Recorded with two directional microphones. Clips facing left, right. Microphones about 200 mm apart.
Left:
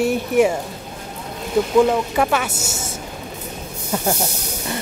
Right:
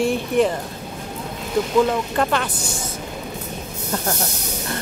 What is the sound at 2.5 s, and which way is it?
Speech, 25° left (ahead or behind).